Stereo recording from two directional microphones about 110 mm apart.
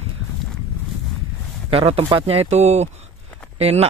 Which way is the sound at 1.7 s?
60° right (ahead or behind).